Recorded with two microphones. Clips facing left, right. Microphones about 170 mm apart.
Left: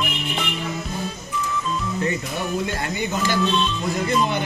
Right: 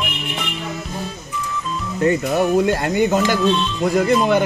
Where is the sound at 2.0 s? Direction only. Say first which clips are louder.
Right 13 dB; 60° right (ahead or behind).